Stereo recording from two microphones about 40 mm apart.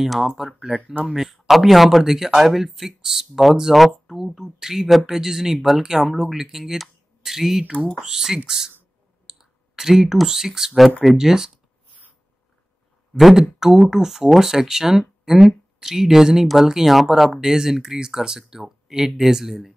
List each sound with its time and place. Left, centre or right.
0.6 s speech: centre
9.3 s clicking: centre
10.1 s speech: centre
13.2 s speech: centre